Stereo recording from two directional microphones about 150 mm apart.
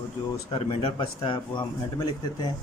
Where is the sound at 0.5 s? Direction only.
35° left (ahead or behind).